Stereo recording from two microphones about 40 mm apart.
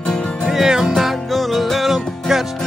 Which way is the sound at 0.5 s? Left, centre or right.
Centre.